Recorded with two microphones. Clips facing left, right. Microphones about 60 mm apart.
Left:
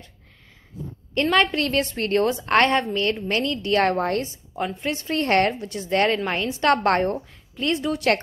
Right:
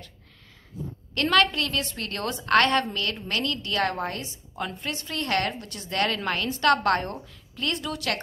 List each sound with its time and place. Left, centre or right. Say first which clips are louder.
1.1 s a woman's voice: left 2 dB; left
1.5 s a woman's voice: left 6 dB; left
4.7 s a woman's voice: left 7 dB; left